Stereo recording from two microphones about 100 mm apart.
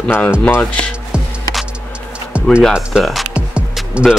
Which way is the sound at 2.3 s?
10° right (ahead or behind).